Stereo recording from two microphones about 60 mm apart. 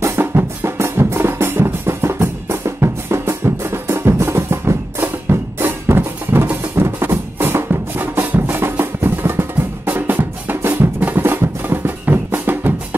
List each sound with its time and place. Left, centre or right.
0.2 s music: right
5.3 s drum: right
6.8 s music: right